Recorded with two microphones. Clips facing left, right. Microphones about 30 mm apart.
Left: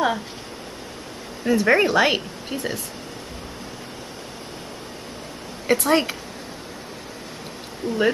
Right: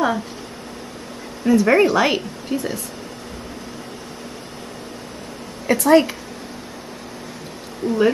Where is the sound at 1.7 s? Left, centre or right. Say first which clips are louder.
Even; centre.